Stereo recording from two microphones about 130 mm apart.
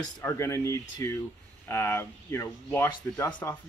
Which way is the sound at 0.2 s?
20° left (ahead or behind).